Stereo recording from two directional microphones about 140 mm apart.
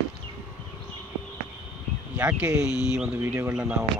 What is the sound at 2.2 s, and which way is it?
Speech, 10° right (ahead or behind).